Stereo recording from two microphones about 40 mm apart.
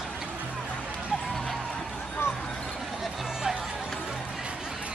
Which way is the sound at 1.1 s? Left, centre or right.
Centre.